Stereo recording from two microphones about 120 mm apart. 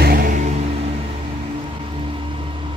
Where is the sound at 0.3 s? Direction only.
70° right (ahead or behind).